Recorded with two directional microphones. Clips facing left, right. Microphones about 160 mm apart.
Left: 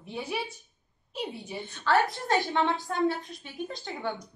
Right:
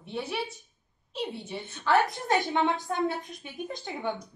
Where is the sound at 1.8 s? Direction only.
15° right (ahead or behind).